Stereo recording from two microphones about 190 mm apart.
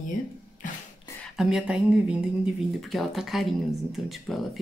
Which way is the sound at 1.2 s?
Centre (ahead or behind).